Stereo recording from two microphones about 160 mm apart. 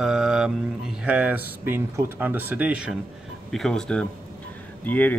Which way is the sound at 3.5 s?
5° left (ahead or behind).